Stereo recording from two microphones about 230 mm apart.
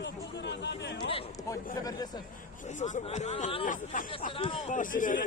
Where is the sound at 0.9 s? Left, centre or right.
Left.